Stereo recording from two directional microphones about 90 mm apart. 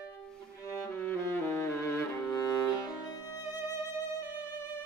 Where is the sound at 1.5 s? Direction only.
30° left (ahead or behind).